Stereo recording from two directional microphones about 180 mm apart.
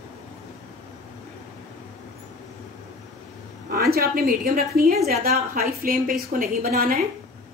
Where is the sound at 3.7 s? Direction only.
55° right (ahead or behind).